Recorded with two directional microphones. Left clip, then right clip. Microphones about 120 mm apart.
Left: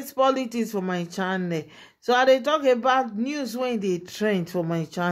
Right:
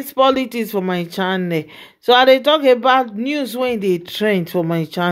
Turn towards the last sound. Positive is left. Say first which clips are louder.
# right 8 dB
turn(degrees=-30)  # may be behind; listen again after turning